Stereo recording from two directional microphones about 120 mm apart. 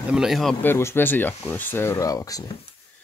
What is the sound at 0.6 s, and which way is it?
Speech, 20° left (ahead or behind).